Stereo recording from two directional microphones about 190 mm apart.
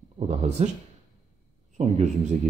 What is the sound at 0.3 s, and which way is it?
Speech, 35° right (ahead or behind).